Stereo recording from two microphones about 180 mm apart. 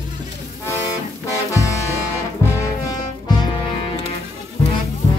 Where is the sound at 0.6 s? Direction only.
15° left (ahead or behind).